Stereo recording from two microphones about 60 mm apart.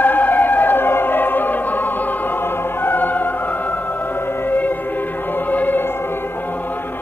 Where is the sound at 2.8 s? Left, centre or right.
Left.